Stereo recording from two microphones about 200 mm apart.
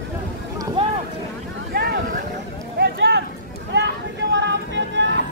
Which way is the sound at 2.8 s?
55° right (ahead or behind).